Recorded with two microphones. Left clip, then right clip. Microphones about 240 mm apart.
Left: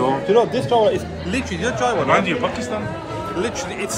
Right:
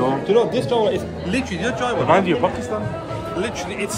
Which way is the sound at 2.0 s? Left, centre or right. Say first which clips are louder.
Right 3 dB; right.